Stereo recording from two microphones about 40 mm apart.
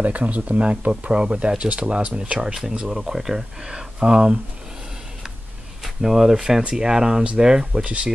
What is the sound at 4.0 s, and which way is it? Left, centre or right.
Speech, right.